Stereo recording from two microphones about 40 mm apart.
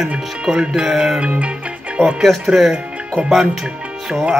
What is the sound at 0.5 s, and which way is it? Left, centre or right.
Music, centre.